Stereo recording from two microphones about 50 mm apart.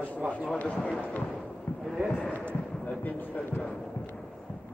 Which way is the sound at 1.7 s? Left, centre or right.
Left.